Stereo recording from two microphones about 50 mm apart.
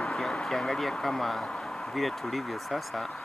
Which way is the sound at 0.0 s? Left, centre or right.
Centre.